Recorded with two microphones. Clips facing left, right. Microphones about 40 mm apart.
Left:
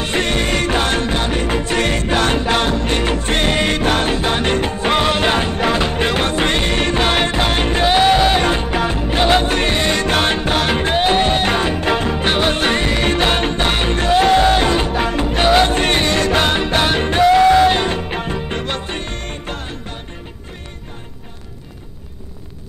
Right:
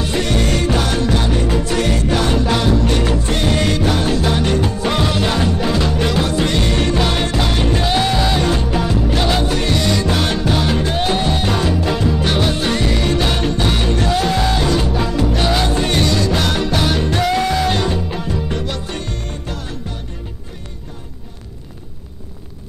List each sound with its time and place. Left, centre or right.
0.0 s music: left